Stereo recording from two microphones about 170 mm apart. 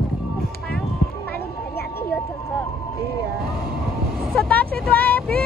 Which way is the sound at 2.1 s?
10° left (ahead or behind).